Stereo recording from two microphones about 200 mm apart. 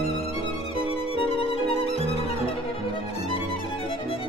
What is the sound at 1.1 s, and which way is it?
Violin, 30° left (ahead or behind).